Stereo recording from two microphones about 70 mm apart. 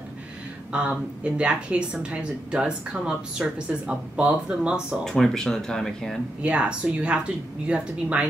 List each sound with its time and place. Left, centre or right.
0.7 s speech: centre
5.0 s speech: centre
6.4 s speech: centre